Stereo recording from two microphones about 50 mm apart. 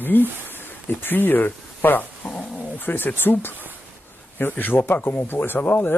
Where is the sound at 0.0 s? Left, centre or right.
Left.